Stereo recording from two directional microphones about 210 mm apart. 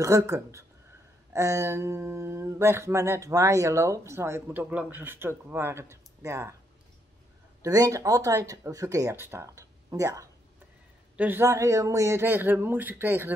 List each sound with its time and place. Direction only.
0.0 s speech: 15° right (ahead or behind)
7.6 s speech: 15° right (ahead or behind)